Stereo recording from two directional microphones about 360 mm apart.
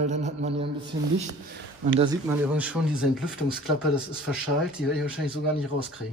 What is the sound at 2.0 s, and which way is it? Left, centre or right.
Speech, centre.